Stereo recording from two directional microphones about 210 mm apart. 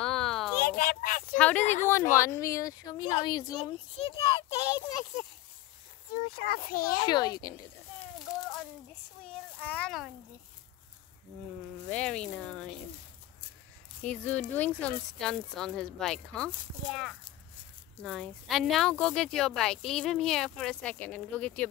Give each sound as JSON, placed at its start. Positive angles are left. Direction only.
{"t": 0.0, "sound": "a sound", "side_deg": 0}
{"t": 0.6, "sound": "speech", "side_deg": 45}
{"t": 1.6, "sound": "speech", "side_deg": 35}
{"t": 1.9, "sound": "a woman's voice", "side_deg": 10}
{"t": 6.1, "sound": "a child's voice", "side_deg": 45}
{"t": 7.0, "sound": "a child's voice", "side_deg": 20}
{"t": 8.4, "sound": "a sound", "side_deg": 0}
{"t": 9.2, "sound": "speech", "side_deg": 5}
{"t": 11.9, "sound": "speech", "side_deg": 5}
{"t": 14.0, "sound": "a woman's voice", "side_deg": 5}